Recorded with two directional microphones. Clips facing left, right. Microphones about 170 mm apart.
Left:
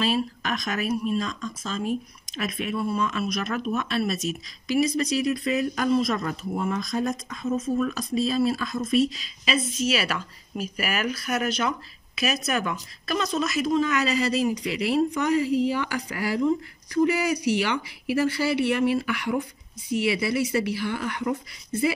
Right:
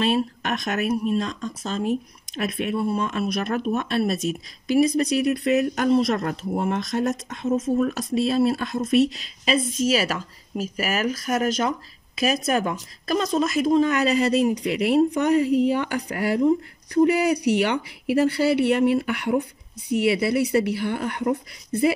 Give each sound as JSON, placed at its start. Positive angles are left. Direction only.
{"t": 0.0, "sound": "a woman's voice", "side_deg": -60}
{"t": 3.5, "sound": "a woman's voice", "side_deg": -45}
{"t": 9.4, "sound": "a woman's voice", "side_deg": -45}
{"t": 11.4, "sound": "a woman's voice", "side_deg": -45}
{"t": 16.3, "sound": "speech", "side_deg": -35}
{"t": 17.1, "sound": "a woman's voice", "side_deg": -60}